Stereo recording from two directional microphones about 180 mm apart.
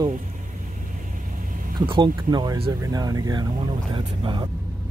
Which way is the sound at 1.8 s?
25° right (ahead or behind).